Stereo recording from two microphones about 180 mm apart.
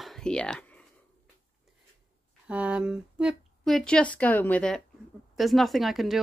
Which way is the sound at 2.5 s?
5° right (ahead or behind).